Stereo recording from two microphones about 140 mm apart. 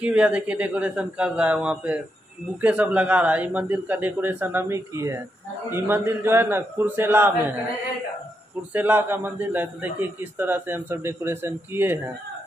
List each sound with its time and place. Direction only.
0.0 s a man's voice: 10° right (ahead or behind)
8.7 s a man's voice: 15° right (ahead or behind)